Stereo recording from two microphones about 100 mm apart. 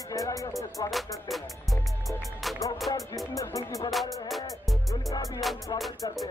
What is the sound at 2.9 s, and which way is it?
Music, 50° left (ahead or behind).